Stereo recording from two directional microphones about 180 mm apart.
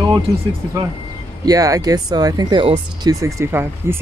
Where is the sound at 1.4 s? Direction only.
20° right (ahead or behind).